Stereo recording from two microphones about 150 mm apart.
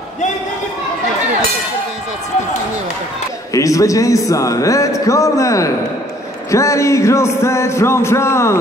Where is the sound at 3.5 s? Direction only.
20° left (ahead or behind).